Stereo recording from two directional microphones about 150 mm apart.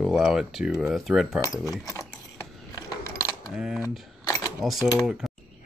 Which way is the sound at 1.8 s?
20° left (ahead or behind).